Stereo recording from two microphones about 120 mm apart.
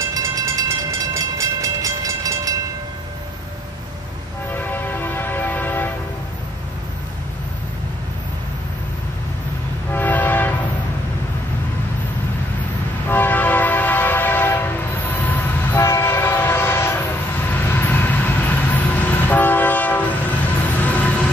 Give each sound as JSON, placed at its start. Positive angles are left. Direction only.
{"t": 0.0, "sound": "train", "side_deg": -25}
{"t": 4.5, "sound": "music", "side_deg": 15}
{"t": 9.9, "sound": "train", "side_deg": 15}
{"t": 13.1, "sound": "train", "side_deg": 15}